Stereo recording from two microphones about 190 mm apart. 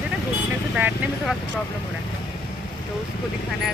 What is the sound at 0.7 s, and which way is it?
Speech, 5° right (ahead or behind).